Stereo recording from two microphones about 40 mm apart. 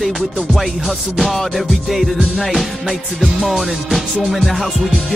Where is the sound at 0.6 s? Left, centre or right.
Centre.